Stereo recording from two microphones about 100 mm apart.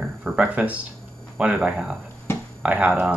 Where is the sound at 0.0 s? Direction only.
10° right (ahead or behind).